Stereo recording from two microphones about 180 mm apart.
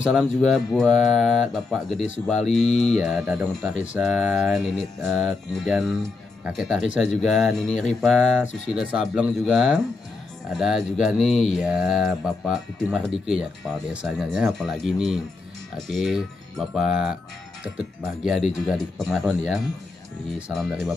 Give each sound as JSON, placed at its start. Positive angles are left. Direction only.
{"t": 0.0, "sound": "mantra", "side_deg": 0}
{"t": 18.2, "sound": "mantra", "side_deg": 0}